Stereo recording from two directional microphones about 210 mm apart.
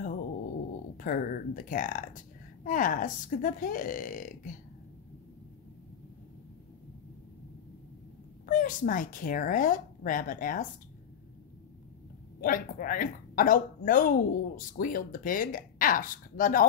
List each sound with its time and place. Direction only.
0.9 s a woman's voice: 40° left (ahead or behind)
8.5 s a woman's voice: 40° left (ahead or behind)
12.4 s a woman's voice: 40° left (ahead or behind)